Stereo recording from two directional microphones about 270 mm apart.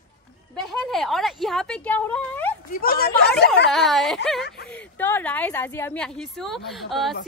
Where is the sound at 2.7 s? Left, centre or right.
Left.